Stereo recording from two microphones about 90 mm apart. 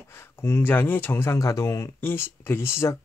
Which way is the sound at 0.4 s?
25° left (ahead or behind).